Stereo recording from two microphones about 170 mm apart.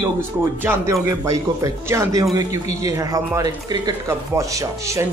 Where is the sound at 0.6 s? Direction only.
10° right (ahead or behind).